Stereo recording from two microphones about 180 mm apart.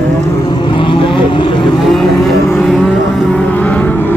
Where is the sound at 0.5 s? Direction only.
25° left (ahead or behind).